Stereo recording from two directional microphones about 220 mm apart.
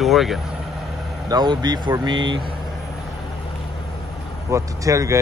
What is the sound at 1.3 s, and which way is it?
Speech, 20° right (ahead or behind).